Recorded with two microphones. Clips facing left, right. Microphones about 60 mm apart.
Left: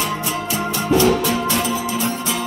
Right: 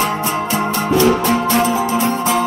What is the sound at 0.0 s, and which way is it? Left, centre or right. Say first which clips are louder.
Music: right 5 dB; right.